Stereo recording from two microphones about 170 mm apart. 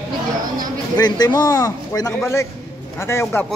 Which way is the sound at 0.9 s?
25° left (ahead or behind).